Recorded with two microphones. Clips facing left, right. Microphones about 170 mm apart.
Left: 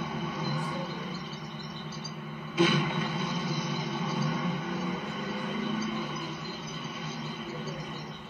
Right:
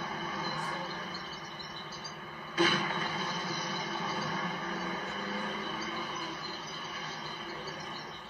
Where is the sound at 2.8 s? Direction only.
Centre (ahead or behind).